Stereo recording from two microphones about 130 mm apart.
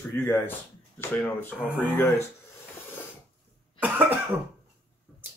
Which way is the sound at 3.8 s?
15° right (ahead or behind).